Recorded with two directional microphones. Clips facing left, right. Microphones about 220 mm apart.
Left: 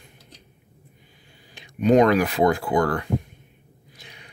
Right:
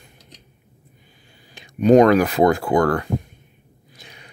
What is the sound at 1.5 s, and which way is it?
Speech, 45° right (ahead or behind).